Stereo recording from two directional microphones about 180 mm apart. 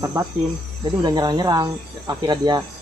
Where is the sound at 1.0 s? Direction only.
25° right (ahead or behind).